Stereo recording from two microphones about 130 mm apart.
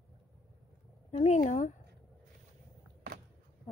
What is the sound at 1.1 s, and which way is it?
Speech, 60° left (ahead or behind).